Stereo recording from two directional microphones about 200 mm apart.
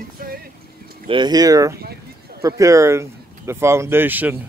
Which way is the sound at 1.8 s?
50° right (ahead or behind).